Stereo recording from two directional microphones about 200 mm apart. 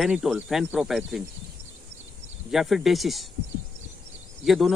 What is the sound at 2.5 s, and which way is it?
Speech, centre (ahead or behind).